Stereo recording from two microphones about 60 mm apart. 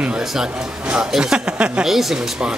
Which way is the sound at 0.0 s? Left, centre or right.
Centre.